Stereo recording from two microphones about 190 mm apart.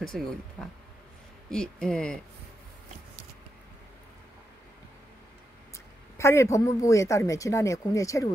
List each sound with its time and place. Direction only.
0.0 s speech: 5° left (ahead or behind)
6.1 s speech: 15° left (ahead or behind)